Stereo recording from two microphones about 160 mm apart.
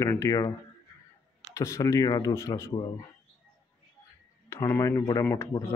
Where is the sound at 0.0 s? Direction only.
20° left (ahead or behind).